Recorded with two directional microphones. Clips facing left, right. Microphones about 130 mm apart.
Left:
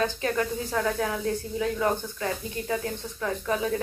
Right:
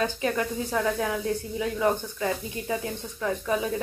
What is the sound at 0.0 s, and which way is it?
Speech, 20° right (ahead or behind).